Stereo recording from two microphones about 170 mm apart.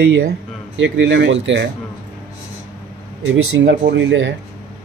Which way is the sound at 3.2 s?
90° right.